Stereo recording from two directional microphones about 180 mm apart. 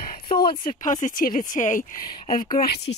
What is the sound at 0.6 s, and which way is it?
Speech, 45° left (ahead or behind).